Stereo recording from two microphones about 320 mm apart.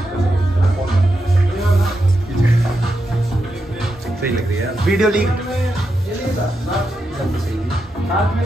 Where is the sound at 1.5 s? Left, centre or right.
Centre.